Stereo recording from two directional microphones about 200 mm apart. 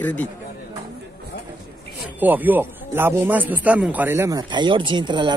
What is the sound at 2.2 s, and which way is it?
A man's voice, 10° right (ahead or behind).